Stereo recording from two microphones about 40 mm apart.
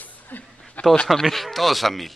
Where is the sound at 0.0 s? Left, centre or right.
Left.